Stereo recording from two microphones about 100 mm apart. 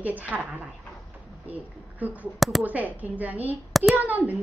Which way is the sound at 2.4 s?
Centre (ahead or behind).